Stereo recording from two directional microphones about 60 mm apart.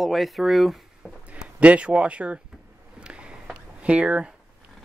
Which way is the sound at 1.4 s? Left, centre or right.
Right.